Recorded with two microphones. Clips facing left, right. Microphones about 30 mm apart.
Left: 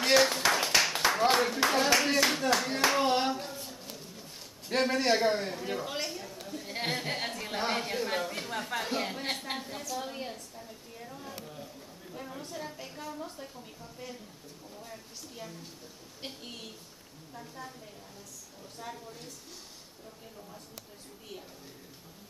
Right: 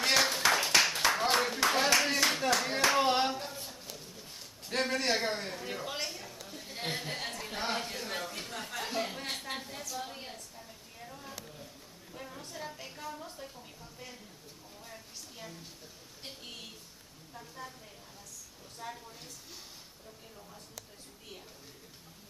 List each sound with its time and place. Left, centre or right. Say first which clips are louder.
0.0 s clapping: left 3 dB; centre
1.2 s speech: left 3 dB; centre
3.9 s a sound: left 2 dB; centre
6.4 s chatter: left 5 dB; centre
6.9 s a woman's voice: left 3 dB; centre
9.8 s a sound: left 4 dB; centre
11.4 s a woman's voice: left 4 dB; centre
18.8 s speech: left 1 dB; centre